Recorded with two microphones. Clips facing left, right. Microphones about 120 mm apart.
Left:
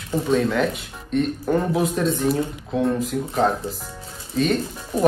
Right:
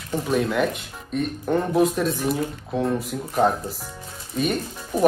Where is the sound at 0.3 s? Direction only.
5° right (ahead or behind).